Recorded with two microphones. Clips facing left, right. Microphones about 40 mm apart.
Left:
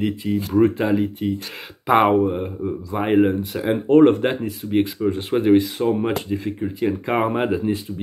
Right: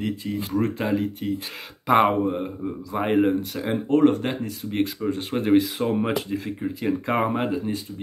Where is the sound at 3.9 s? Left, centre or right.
Left.